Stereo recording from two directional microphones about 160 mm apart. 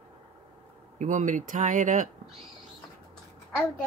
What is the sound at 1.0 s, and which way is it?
Speech, 50° right (ahead or behind).